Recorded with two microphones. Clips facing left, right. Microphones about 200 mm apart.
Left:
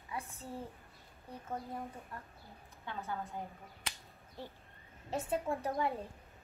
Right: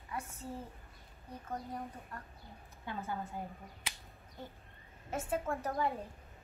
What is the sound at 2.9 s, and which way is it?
Speech, 10° right (ahead or behind).